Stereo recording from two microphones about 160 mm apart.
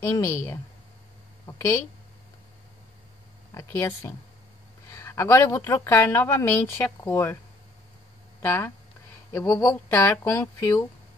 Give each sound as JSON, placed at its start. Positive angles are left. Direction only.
{"t": 0.0, "sound": "a woman's voice", "side_deg": 15}
{"t": 3.5, "sound": "speech", "side_deg": 15}
{"t": 8.4, "sound": "speech", "side_deg": 15}